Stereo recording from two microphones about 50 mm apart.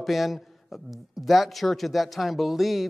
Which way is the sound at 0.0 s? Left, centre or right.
Centre.